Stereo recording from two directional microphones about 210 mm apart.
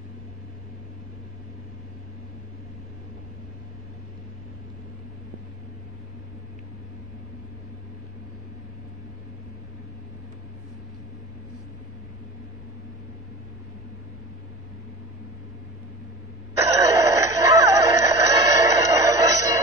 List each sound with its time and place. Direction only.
16.5 s music: 15° right (ahead or behind)